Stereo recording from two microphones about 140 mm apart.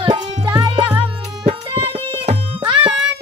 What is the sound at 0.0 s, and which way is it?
Music, 35° right (ahead or behind).